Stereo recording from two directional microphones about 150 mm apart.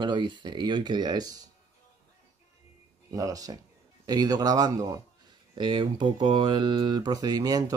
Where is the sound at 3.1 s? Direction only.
25° right (ahead or behind).